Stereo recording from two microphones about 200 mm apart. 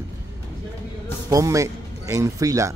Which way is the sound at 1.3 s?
15° right (ahead or behind).